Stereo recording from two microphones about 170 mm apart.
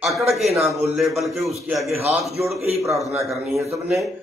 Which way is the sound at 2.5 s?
40° right (ahead or behind).